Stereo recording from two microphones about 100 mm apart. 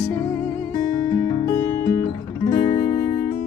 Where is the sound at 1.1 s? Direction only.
30° left (ahead or behind).